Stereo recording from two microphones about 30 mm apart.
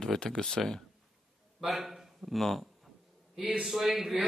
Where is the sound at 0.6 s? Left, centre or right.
Centre.